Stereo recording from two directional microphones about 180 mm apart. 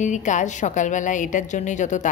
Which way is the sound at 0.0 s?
40° left (ahead or behind).